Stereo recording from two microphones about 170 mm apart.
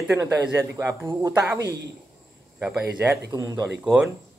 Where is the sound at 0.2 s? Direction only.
15° right (ahead or behind).